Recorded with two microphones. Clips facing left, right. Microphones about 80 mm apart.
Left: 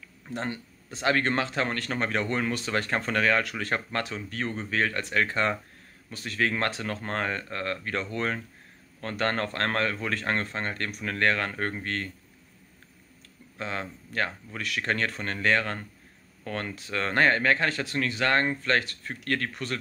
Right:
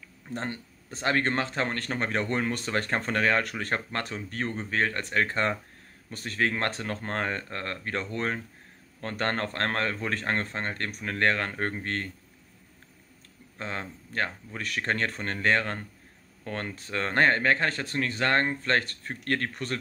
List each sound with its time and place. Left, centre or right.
0.5 s speech: centre
1.0 s speech: right
2.5 s speech: right
11.5 s speech: centre
11.8 s speech: right
13.6 s speech: right